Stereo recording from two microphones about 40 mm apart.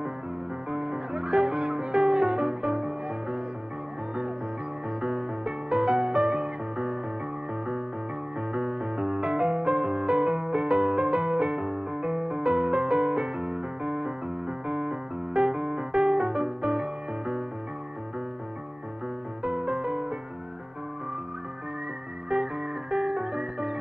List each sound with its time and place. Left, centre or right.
0.7 s music: right
5.0 s music: right
8.4 s music: right
19.4 s music: right
22.3 s music: right